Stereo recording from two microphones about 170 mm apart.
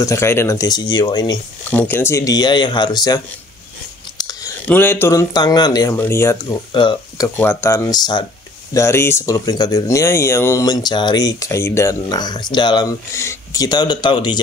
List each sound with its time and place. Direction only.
0.0 s speech: 15° left (ahead or behind)
1.7 s speech: 10° left (ahead or behind)
4.6 s speech: 10° left (ahead or behind)
6.7 s speech: 30° left (ahead or behind)
7.3 s speech: 15° left (ahead or behind)